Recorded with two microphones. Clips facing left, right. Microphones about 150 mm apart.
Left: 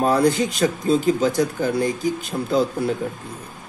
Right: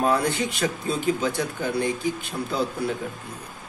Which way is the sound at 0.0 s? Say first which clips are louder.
Left 5 dB; 40° left (ahead or behind).